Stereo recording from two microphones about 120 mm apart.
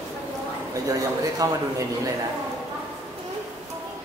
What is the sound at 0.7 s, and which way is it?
Speech, 30° right (ahead or behind).